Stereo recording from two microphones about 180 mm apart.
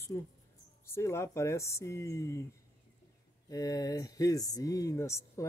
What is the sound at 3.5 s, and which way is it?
Speech, 20° left (ahead or behind).